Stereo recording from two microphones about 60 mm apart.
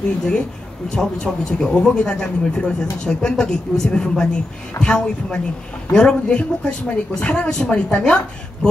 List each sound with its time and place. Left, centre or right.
0.8 s speech: centre